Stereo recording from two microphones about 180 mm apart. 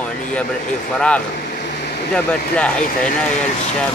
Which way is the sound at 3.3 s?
40° left (ahead or behind).